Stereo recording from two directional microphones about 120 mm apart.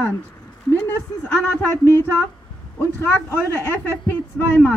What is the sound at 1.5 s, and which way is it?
Speech, 25° left (ahead or behind).